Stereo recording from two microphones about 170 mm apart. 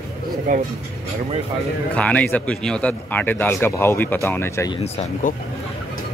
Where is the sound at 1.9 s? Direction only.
10° left (ahead or behind).